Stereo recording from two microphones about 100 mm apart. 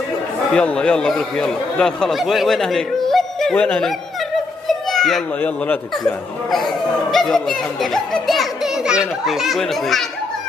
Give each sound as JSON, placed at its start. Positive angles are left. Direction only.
{"t": 0.5, "sound": "speech", "side_deg": 10}
{"t": 3.5, "sound": "speech", "side_deg": 15}
{"t": 4.6, "sound": "children playing", "side_deg": 0}
{"t": 5.4, "sound": "speech", "side_deg": 15}
{"t": 6.5, "sound": "a child's voice", "side_deg": 0}